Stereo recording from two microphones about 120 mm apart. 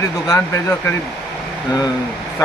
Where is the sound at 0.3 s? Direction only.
25° left (ahead or behind).